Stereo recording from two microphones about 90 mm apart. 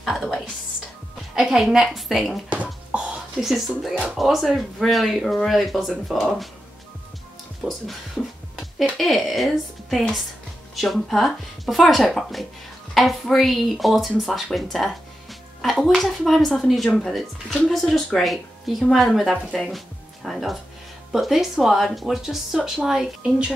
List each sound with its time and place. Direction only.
0.0 s music: centre (ahead or behind)
1.3 s speech: 10° right (ahead or behind)
2.5 s a sound: 15° right (ahead or behind)
3.3 s speech: 5° right (ahead or behind)
7.6 s speech: centre (ahead or behind)